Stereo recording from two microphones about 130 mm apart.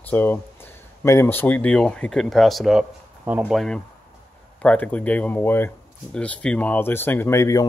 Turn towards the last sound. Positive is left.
turn(degrees=20)  # may be behind; listen again after turning